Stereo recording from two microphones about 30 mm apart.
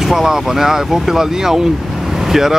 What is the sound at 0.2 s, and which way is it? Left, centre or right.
Speech, centre.